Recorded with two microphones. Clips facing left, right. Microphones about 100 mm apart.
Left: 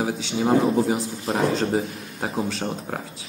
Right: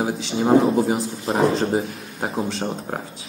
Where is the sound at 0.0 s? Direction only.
5° right (ahead or behind).